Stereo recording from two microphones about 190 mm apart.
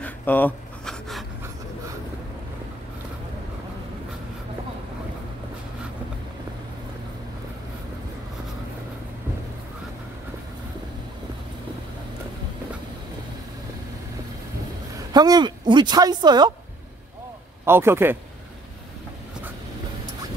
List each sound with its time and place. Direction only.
0.0 s pant: 10° left (ahead or behind)
15.0 s speech: 20° right (ahead or behind)
17.6 s a man's voice: 10° right (ahead or behind)